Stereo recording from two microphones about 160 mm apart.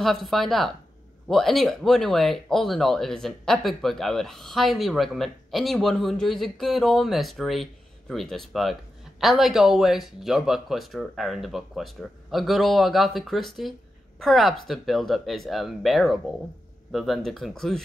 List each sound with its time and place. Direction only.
0.0 s speech: centre (ahead or behind)